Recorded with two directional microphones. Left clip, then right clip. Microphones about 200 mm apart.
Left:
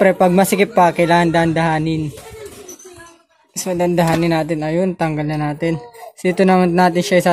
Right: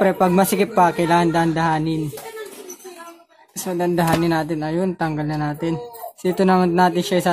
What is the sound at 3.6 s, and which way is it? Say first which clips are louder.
Speech: left 3 dB; 25° left (ahead or behind).